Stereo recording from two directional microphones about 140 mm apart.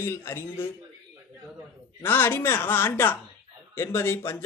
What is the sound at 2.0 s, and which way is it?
A man's voice, 15° left (ahead or behind).